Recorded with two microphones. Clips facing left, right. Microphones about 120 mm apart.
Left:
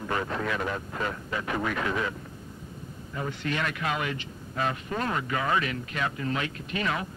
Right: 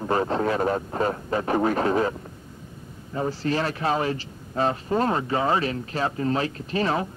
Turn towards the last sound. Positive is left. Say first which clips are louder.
# right 6 dB
turn(degrees=-35)  # may be behind; listen again after turning